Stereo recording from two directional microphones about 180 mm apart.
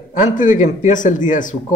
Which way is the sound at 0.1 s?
45° left (ahead or behind).